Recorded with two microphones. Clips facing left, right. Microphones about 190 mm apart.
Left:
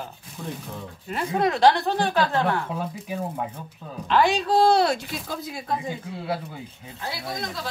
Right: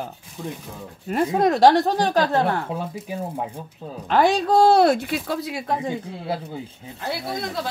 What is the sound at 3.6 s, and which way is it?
Speech, 35° right (ahead or behind).